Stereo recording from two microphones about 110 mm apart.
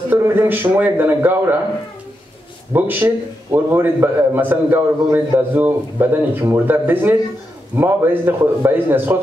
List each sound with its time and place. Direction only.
0.1 s a man's voice: 20° right (ahead or behind)
2.7 s a man's voice: 20° right (ahead or behind)